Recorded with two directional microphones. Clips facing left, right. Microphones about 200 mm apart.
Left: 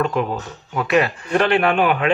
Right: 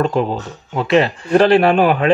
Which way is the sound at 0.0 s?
30° right (ahead or behind).